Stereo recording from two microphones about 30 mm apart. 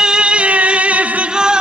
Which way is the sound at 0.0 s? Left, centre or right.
Right.